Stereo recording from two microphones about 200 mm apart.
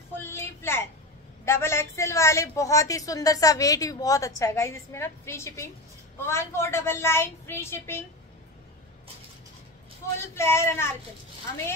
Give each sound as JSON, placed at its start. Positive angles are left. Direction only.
{"t": 0.2, "sound": "a sound", "side_deg": 10}
{"t": 1.4, "sound": "a woman's voice", "side_deg": 15}
{"t": 10.3, "sound": "a woman's voice", "side_deg": 15}